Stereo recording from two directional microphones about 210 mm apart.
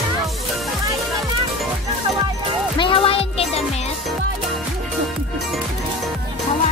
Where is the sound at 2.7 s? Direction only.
25° left (ahead or behind).